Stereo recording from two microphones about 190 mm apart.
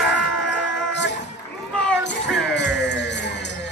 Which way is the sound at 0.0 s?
70° left (ahead or behind).